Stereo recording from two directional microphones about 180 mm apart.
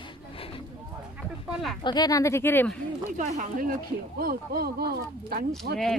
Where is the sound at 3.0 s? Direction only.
45° right (ahead or behind).